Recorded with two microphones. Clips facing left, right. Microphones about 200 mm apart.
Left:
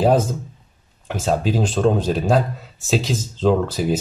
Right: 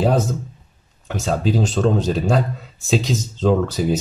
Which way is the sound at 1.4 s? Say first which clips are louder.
Right 2 dB; 10° left (ahead or behind).